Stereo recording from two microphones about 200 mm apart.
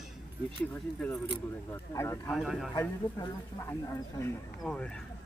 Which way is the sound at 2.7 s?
20° left (ahead or behind).